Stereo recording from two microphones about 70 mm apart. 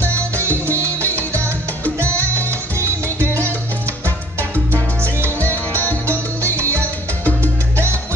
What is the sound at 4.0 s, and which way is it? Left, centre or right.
Music, left.